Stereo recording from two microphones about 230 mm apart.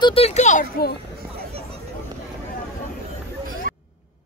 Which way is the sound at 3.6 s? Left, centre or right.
Right.